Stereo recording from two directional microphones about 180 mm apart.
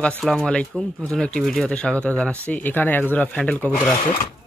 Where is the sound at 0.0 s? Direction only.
5° left (ahead or behind).